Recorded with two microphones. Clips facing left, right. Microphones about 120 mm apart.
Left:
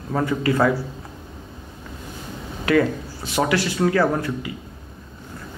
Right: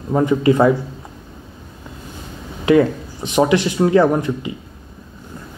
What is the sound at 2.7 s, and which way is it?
Speech, 20° right (ahead or behind).